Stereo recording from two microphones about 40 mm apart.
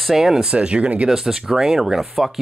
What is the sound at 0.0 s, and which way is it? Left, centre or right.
Speech, centre.